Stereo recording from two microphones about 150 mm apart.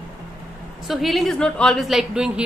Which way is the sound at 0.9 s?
Centre (ahead or behind).